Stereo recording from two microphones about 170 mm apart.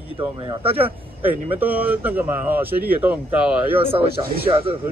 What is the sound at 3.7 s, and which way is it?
Speech, 35° right (ahead or behind).